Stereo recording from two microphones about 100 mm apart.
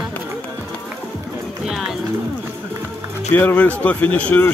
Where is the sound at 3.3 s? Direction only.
20° left (ahead or behind).